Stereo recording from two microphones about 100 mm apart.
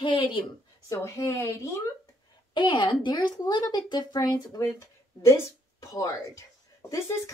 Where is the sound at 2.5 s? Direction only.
50° left (ahead or behind).